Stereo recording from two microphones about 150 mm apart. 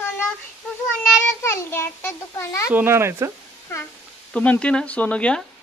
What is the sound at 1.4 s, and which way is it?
A child's voice, 15° left (ahead or behind).